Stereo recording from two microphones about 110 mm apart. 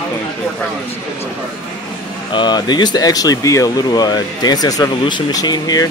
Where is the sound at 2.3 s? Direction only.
45° left (ahead or behind).